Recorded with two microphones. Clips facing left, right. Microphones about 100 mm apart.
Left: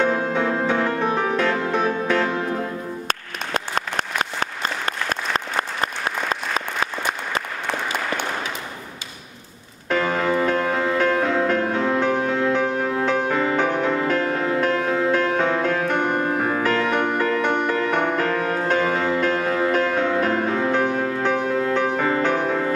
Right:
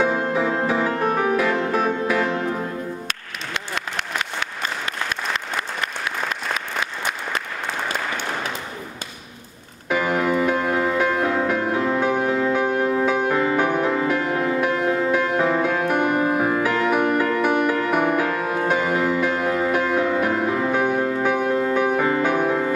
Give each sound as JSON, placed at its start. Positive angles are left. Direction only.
{"t": 0.0, "sound": "music", "side_deg": -5}
{"t": 3.1, "sound": "applause", "side_deg": 40}
{"t": 9.8, "sound": "music", "side_deg": -10}